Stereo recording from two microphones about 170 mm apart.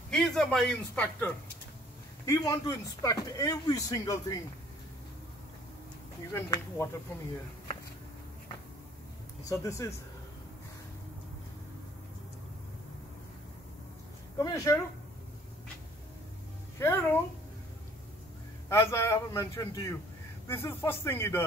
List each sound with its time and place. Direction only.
0.1 s a man's voice: 5° left (ahead or behind)
2.2 s speech: 20° left (ahead or behind)
6.3 s a man's voice: 15° left (ahead or behind)
9.5 s a man's voice: 20° left (ahead or behind)
14.4 s speech: 20° left (ahead or behind)
16.7 s speech: 15° left (ahead or behind)
18.7 s a man's voice: 15° left (ahead or behind)